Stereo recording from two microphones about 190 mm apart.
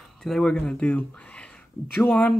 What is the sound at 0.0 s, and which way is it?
Speech, centre (ahead or behind).